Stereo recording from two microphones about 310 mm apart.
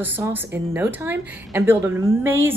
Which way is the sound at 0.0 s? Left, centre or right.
Centre.